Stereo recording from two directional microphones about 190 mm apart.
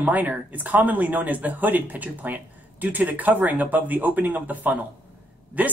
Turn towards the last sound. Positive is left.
turn(degrees=-10)  # may be behind; listen again after turning